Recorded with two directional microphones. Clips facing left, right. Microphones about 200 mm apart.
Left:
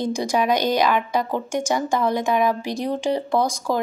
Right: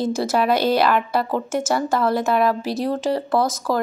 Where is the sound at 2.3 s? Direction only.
15° left (ahead or behind).